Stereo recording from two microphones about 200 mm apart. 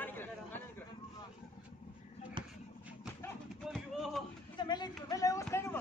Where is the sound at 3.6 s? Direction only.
Centre (ahead or behind).